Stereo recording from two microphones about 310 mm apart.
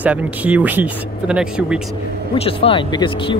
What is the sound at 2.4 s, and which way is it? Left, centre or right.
Speech, centre.